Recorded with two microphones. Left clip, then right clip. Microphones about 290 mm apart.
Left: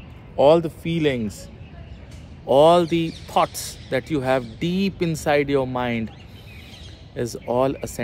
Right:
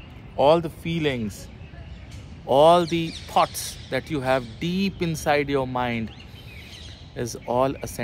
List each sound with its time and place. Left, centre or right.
0.4 s speech: centre
2.4 s speech: centre
7.2 s speech: centre